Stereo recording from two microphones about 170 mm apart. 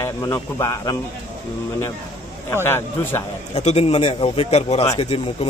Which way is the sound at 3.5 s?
40° left (ahead or behind).